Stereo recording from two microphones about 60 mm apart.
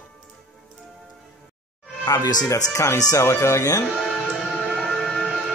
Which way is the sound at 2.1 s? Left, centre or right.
Left.